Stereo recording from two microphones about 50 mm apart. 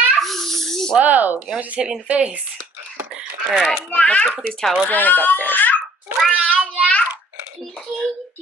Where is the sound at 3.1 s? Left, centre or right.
Centre.